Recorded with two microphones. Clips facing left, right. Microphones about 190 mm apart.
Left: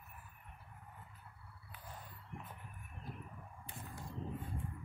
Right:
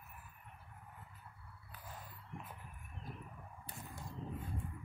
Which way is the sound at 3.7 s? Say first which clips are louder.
Even; 35° right (ahead or behind).